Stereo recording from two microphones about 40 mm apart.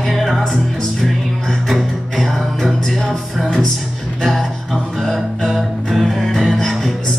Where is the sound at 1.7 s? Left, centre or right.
Centre.